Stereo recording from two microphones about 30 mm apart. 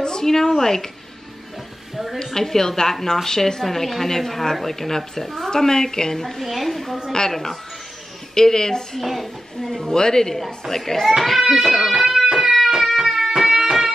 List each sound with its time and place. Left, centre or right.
0.0 s speech: centre
2.1 s a woman's voice: centre
3.6 s a woman's voice: centre
6.4 s speech: centre
7.1 s a woman's voice: centre
9.0 s speech: centre
9.7 s a woman's voice: centre
10.3 s a woman's voice: centre
11.4 s guitar: centre
11.9 s music: centre
12.4 s a sound: centre
13.5 s a sound: centre